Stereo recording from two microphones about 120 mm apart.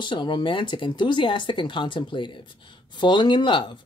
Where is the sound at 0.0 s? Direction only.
40° left (ahead or behind).